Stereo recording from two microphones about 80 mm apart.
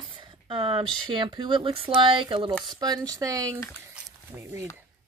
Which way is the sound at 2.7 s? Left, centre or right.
Right.